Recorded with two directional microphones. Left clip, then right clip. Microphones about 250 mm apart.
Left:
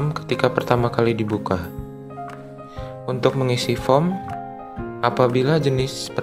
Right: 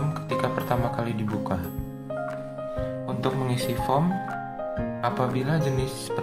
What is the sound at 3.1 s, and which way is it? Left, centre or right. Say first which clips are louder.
Speech: left 11 dB; left.